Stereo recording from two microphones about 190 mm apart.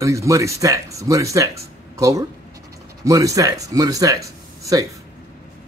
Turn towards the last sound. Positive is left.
turn(degrees=-15)  # may be behind; listen again after turning